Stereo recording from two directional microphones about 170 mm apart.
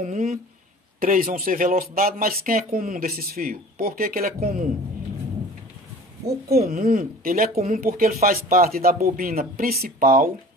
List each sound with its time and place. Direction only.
0.0 s speech: 50° right (ahead or behind)
6.5 s speech: 60° right (ahead or behind)